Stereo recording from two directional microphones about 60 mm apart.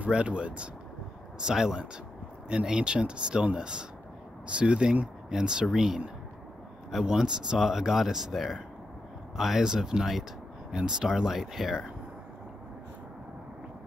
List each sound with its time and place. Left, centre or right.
0.0 s speech: centre